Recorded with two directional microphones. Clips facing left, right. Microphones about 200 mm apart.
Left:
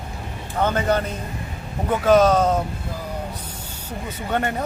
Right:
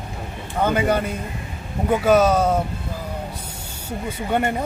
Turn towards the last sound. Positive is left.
turn(degrees=-10)  # may be behind; listen again after turning